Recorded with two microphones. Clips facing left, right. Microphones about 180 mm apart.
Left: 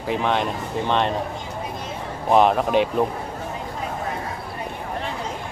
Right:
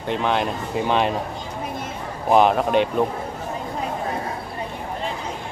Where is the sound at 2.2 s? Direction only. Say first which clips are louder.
Even; centre (ahead or behind).